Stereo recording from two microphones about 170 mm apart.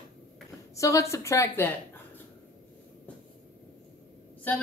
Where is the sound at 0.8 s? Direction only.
20° left (ahead or behind).